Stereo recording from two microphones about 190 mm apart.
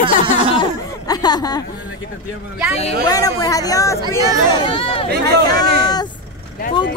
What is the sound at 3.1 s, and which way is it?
Speech, 20° left (ahead or behind).